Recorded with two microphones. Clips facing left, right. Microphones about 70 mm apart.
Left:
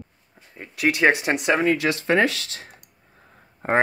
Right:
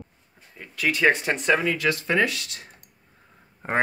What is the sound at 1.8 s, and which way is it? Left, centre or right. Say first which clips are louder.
Speech: left 2 dB; left.